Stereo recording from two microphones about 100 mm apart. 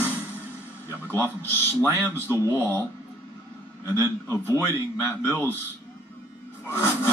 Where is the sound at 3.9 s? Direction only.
35° right (ahead or behind).